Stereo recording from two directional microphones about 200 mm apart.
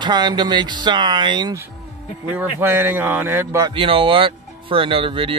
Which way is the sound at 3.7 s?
25° right (ahead or behind).